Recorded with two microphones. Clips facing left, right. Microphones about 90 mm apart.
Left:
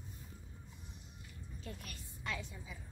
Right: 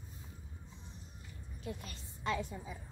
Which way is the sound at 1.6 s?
20° right (ahead or behind).